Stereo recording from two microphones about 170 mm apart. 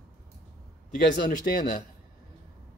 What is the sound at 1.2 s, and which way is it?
Speech, 55° left (ahead or behind).